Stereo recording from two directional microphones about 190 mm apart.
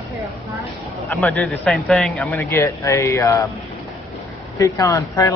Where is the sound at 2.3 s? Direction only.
15° left (ahead or behind).